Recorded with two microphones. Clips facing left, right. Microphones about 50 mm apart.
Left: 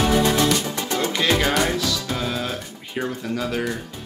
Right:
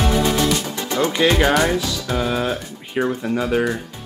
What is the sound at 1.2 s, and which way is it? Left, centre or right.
Speech, right.